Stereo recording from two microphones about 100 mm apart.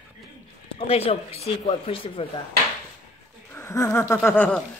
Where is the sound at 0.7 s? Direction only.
85° left; by 2.2 s 65° left (ahead or behind).